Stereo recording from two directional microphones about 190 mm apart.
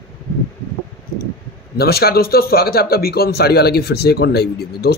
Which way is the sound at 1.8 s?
55° left (ahead or behind).